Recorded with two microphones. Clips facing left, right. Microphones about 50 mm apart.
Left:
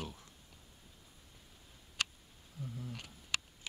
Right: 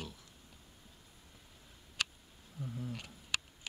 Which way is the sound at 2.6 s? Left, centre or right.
Centre.